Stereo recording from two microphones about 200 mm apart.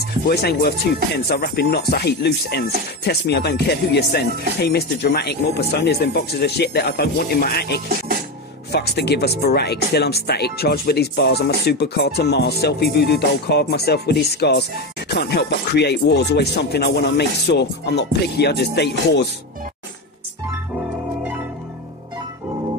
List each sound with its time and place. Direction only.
0.3 s speech: 55° left (ahead or behind)